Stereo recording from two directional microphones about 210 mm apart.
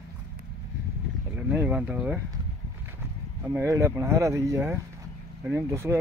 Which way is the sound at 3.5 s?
10° right (ahead or behind).